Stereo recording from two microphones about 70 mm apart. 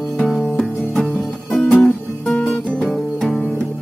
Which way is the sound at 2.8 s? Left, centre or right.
Centre.